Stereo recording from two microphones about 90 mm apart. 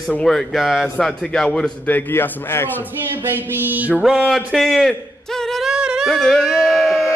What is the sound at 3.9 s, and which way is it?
Speech, 10° right (ahead or behind).